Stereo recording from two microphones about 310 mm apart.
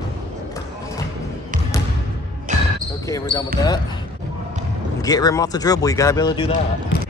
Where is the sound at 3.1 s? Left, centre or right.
Centre.